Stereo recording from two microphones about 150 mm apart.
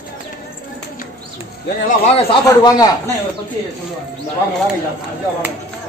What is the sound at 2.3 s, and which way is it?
Speech, 25° left (ahead or behind).